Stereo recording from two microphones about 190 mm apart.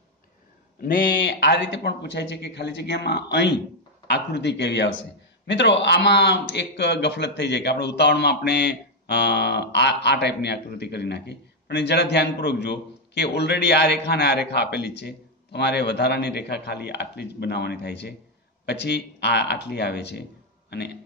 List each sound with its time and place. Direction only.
1.2 s a man's voice: 65° left (ahead or behind)